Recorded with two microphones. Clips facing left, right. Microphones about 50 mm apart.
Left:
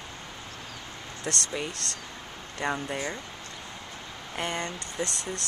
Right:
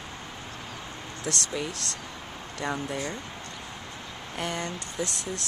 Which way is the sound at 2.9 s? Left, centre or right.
Centre.